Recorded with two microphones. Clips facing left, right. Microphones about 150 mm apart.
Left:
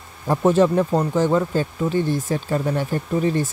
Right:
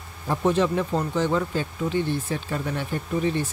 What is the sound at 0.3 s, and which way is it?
Speech, 45° left (ahead or behind).